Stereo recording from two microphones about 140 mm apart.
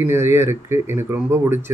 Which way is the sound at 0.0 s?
15° right (ahead or behind).